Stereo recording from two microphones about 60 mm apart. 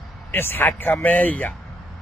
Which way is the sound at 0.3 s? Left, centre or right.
Left.